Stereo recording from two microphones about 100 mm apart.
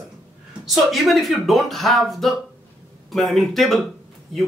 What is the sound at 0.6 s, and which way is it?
Speech, centre (ahead or behind).